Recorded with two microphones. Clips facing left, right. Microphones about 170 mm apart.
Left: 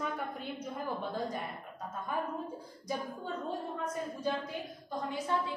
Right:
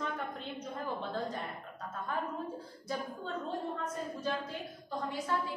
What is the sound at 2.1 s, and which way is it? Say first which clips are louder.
A woman's voice: left 1 dB; 10° left (ahead or behind).